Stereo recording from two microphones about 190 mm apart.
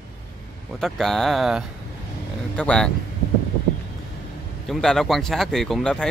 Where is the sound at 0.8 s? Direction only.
Centre (ahead or behind).